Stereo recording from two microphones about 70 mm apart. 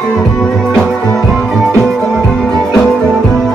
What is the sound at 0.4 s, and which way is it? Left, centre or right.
Music, centre.